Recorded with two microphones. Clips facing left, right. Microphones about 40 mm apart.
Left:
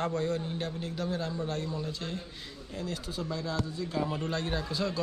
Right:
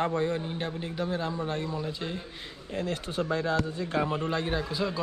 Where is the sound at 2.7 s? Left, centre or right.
Right.